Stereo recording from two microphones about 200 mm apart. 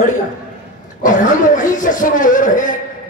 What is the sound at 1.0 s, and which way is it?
A man's voice, 40° left (ahead or behind).